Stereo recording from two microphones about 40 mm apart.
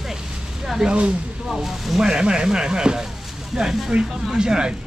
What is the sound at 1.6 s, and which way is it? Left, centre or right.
Speech, centre.